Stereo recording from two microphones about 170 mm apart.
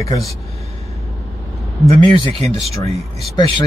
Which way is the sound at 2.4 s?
35° right (ahead or behind).